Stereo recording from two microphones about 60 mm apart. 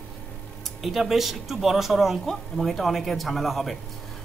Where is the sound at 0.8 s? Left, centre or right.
Centre.